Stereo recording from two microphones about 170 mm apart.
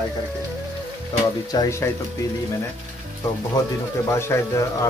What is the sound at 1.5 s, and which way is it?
Speech, 20° left (ahead or behind).